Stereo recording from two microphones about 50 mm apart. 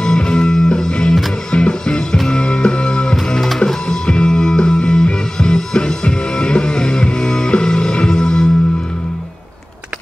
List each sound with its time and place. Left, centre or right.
0.0 s music: centre
3.3 s music: centre